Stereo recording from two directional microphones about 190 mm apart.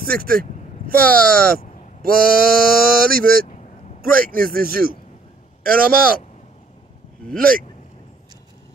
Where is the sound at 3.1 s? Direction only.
50° right (ahead or behind).